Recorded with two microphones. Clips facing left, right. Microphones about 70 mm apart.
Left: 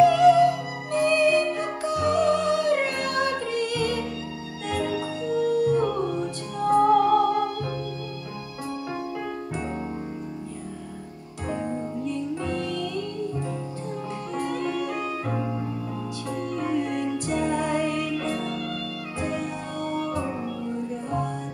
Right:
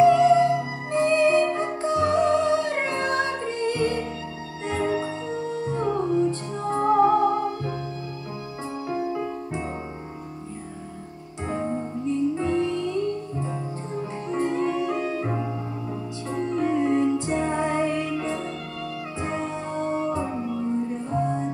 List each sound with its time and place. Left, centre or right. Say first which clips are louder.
0.0 s music: even; right
8.8 s music: right 7 dB; right
11.4 s music: right 1 dB; right